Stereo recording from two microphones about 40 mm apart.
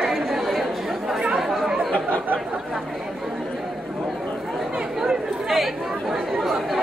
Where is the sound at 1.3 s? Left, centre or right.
Centre.